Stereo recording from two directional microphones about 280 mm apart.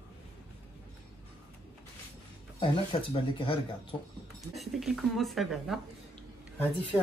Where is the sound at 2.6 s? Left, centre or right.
Centre.